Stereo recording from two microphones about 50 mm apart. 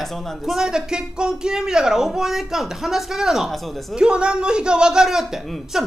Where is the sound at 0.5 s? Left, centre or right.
Centre.